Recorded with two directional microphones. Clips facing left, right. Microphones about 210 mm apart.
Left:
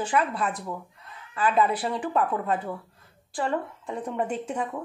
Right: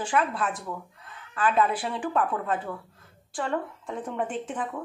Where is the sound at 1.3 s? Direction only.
5° left (ahead or behind).